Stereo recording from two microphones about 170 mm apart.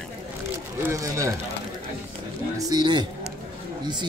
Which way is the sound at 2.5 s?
25° right (ahead or behind).